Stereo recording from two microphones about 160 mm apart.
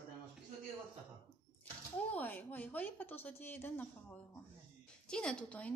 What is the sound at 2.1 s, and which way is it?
A woman's voice, 10° left (ahead or behind).